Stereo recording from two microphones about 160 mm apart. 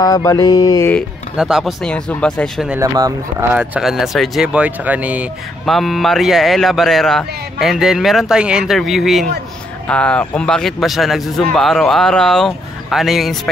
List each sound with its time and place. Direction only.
0.0 s mantra: 20° left (ahead or behind)
1.3 s speech: 5° right (ahead or behind)
2.8 s speech: 20° right (ahead or behind)
3.5 s speech: 5° right (ahead or behind)